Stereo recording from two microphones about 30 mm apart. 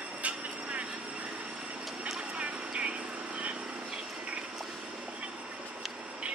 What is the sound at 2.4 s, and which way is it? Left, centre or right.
Vehicle, right.